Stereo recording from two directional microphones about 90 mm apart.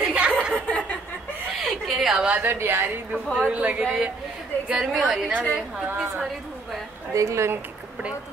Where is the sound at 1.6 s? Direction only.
Centre (ahead or behind).